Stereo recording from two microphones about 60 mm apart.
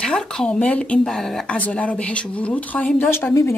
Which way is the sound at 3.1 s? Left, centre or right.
Left.